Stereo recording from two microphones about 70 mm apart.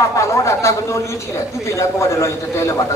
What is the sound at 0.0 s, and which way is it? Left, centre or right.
A man's voice, left.